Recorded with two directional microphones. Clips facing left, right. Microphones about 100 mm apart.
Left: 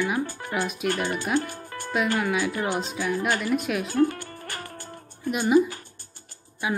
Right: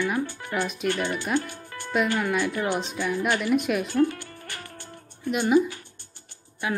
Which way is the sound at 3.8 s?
40° left (ahead or behind).